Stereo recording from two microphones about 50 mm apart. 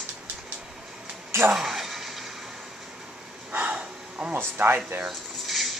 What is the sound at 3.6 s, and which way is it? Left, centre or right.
Dog, right.